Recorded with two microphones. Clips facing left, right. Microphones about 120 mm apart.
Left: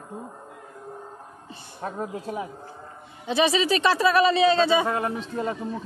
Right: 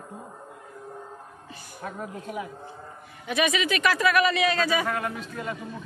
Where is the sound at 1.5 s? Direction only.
30° left (ahead or behind).